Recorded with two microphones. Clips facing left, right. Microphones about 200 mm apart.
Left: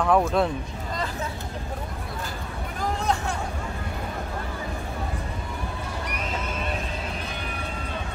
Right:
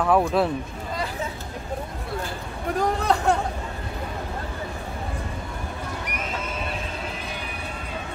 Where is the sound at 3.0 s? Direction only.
65° right (ahead or behind).